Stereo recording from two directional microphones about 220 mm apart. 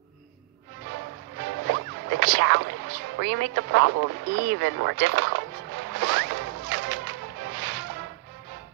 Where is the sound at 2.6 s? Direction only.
55° right (ahead or behind).